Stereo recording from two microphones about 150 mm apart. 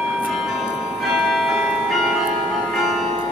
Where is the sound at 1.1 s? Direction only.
5° right (ahead or behind).